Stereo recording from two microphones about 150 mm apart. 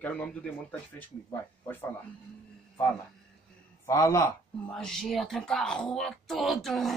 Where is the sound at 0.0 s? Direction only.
10° left (ahead or behind).